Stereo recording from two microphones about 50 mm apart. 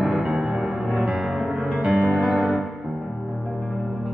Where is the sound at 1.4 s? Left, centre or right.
Centre.